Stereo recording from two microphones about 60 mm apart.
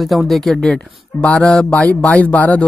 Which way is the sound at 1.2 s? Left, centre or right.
Centre.